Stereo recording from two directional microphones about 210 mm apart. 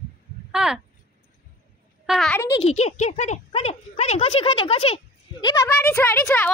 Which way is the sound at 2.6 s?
30° left (ahead or behind).